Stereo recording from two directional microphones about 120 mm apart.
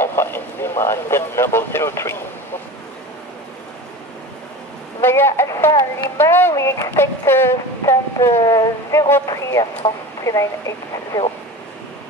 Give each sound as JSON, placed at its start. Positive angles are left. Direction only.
{"t": 0.0, "sound": "speech", "side_deg": 20}
{"t": 5.0, "sound": "speech", "side_deg": 20}